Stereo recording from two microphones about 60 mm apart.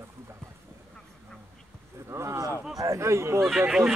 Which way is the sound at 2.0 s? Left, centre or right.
Right.